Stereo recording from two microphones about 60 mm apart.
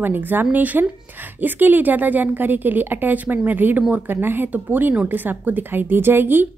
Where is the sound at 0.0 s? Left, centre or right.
Right.